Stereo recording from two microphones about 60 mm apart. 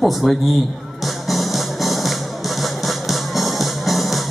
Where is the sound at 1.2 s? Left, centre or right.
Centre.